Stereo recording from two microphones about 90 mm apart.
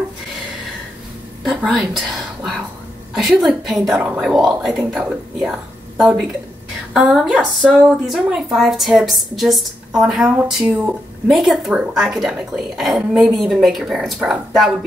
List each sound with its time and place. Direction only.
1.4 s a woman's voice: centre (ahead or behind)
3.9 s speech: 15° right (ahead or behind)
4.2 s a woman's voice: 5° right (ahead or behind)
5.5 s a sound: 15° right (ahead or behind)
6.9 s a woman's voice: 5° right (ahead or behind)